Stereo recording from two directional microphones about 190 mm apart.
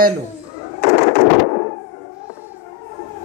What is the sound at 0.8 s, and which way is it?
Fireworks, 35° left (ahead or behind).